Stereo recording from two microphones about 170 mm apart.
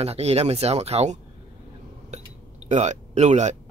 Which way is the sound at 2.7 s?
45° right (ahead or behind).